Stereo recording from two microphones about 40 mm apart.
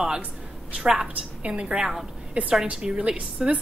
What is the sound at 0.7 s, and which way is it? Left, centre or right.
Speech, centre.